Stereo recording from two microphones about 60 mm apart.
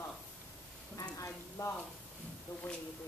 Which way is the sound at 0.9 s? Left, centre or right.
Left.